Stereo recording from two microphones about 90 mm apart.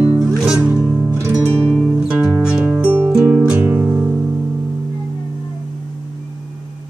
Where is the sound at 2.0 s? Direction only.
10° right (ahead or behind).